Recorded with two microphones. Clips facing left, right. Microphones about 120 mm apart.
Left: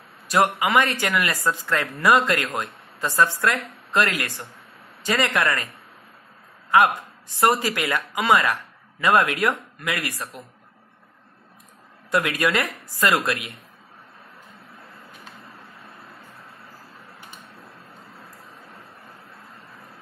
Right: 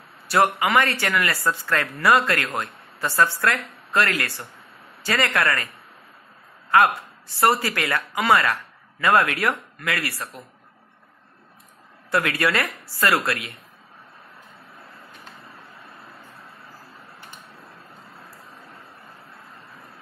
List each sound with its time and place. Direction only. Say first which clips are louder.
0.3 s a woman's voice: even; 20° left (ahead or behind)
6.7 s a woman's voice: even; 20° left (ahead or behind)
12.1 s a woman's voice: even; 20° left (ahead or behind)